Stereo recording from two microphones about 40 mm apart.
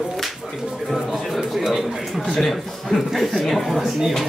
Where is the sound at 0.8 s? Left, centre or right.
Centre.